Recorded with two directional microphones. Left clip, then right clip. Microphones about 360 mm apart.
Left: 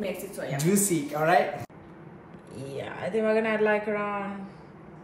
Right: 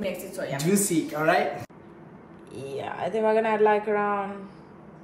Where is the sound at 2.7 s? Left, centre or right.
Centre.